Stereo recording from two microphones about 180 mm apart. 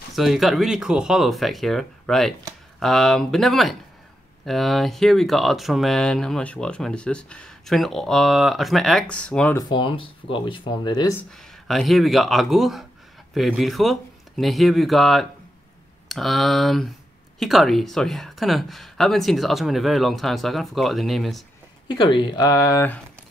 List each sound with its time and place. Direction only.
0.1 s speech: centre (ahead or behind)
9.6 s speech: 25° left (ahead or behind)
11.6 s speech: centre (ahead or behind)
21.8 s speech: 25° left (ahead or behind)